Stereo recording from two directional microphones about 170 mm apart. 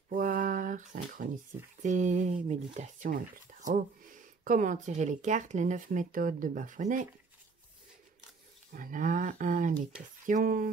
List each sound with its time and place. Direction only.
0.1 s a sound: 55° right (ahead or behind)
1.8 s speech: 45° right (ahead or behind)
8.7 s speech: 50° right (ahead or behind)